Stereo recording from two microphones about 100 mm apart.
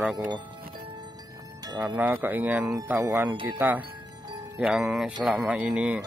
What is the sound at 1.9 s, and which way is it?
Speech, 20° right (ahead or behind).